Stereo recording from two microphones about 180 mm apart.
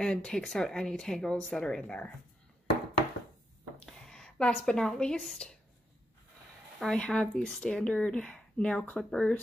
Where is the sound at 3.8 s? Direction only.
5° left (ahead or behind).